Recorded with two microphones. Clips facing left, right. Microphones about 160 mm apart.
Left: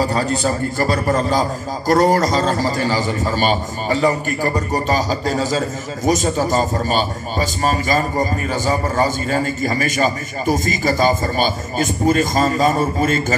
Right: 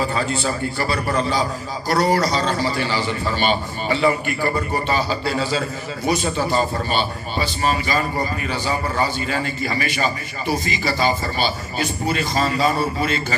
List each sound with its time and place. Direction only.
0.0 s a man's voice: 40° left (ahead or behind)